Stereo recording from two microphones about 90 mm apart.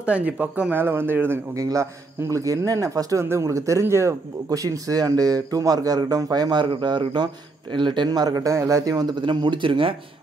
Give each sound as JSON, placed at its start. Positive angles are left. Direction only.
{"t": 0.0, "sound": "speech", "side_deg": -15}
{"t": 1.5, "sound": "a man's voice", "side_deg": -35}
{"t": 9.2, "sound": "speech", "side_deg": -60}